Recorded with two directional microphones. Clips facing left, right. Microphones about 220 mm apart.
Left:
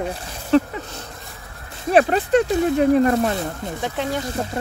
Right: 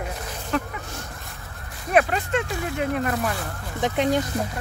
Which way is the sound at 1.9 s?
35° left (ahead or behind).